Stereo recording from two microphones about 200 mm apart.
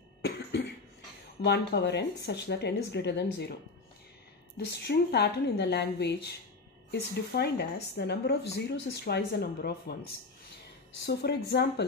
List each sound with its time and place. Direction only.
1.4 s speech: 55° left (ahead or behind)
4.7 s speech: 55° left (ahead or behind)
11.1 s speech: 55° left (ahead or behind)